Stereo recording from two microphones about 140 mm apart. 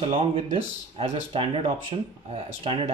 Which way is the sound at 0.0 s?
45° right (ahead or behind).